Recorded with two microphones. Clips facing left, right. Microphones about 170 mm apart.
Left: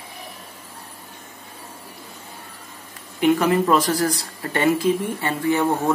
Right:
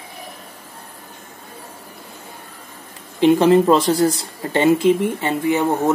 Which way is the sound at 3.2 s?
25° right (ahead or behind).